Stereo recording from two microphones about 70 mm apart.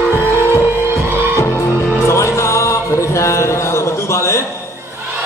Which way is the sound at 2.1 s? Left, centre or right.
Left.